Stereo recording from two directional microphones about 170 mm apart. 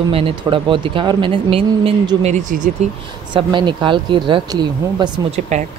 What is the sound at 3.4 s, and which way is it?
Speech, 25° right (ahead or behind).